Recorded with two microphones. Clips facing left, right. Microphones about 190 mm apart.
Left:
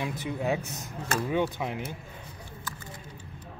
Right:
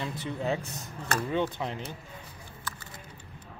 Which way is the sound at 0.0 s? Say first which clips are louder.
Left 2 dB; 10° left (ahead or behind).